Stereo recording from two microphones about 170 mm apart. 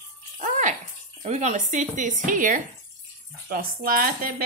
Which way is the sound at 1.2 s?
45° right (ahead or behind).